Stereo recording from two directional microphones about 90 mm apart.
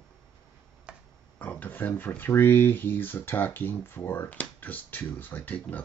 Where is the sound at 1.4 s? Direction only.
20° left (ahead or behind).